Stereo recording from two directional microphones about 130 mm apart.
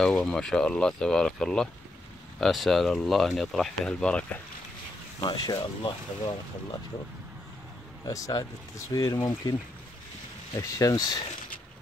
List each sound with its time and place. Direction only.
0.0 s speech: 5° left (ahead or behind)
5.2 s speech: 30° left (ahead or behind)
8.0 s speech: 25° left (ahead or behind)